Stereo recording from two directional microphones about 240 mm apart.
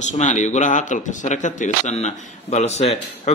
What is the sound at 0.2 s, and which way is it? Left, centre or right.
Speech, left.